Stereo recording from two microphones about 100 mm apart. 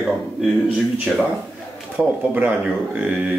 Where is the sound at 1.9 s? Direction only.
20° right (ahead or behind).